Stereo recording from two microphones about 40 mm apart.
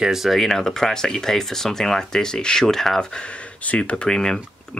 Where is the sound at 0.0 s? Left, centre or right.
Centre.